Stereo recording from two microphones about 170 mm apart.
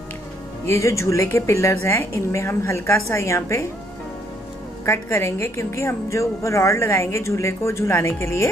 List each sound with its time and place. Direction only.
0.7 s a woman's voice: 15° left (ahead or behind)
4.8 s a woman's voice: 15° left (ahead or behind)